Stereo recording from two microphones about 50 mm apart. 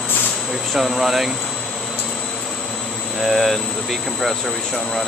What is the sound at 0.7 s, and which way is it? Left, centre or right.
Speech, centre.